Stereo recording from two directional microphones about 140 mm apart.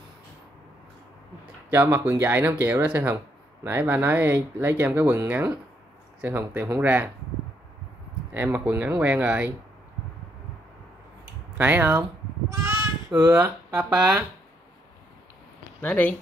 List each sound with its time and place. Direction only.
1.4 s speech: 15° right (ahead or behind)
8.3 s speech: 15° right (ahead or behind)
11.5 s speech: 15° right (ahead or behind)
12.6 s child singing: 15° right (ahead or behind)
13.9 s speech: 25° right (ahead or behind)
15.8 s speech: 10° left (ahead or behind)